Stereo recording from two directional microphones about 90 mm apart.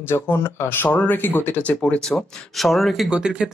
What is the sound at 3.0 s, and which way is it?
Speech, 10° right (ahead or behind).